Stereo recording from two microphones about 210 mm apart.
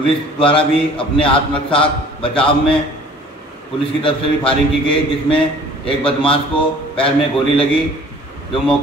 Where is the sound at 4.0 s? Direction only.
25° left (ahead or behind).